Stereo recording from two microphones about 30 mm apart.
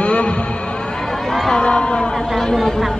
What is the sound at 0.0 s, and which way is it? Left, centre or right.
Vehicle, left.